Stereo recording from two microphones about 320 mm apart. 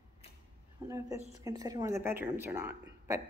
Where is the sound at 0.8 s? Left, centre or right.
Centre.